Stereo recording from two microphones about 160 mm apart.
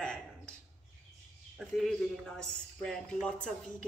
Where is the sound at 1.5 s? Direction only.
Centre (ahead or behind).